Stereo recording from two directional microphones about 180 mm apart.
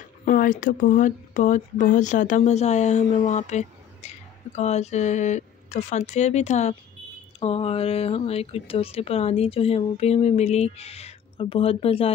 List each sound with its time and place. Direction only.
0.2 s speech: 45° left (ahead or behind); by 12.1 s 30° left (ahead or behind)